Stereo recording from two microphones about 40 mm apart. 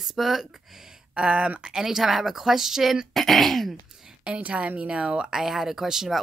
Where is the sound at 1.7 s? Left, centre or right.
Centre.